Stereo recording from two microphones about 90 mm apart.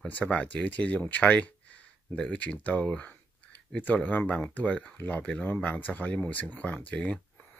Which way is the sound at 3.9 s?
15° left (ahead or behind).